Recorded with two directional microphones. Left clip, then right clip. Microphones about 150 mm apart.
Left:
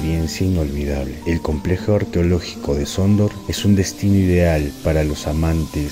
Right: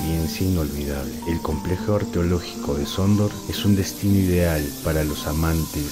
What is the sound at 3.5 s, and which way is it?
Speech, 25° left (ahead or behind).